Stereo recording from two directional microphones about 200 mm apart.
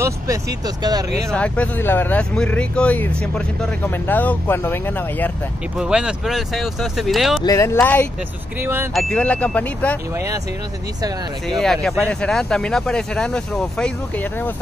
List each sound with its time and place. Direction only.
0.0 s speech: 15° right (ahead or behind)
1.3 s speech: 5° left (ahead or behind)
5.8 s speech: 5° right (ahead or behind)
7.4 s speech: 15° left (ahead or behind)
8.5 s speech: 10° right (ahead or behind)
8.9 s speech: 5° left (ahead or behind)
10.1 s speech: 15° right (ahead or behind)
11.4 s speech: centre (ahead or behind)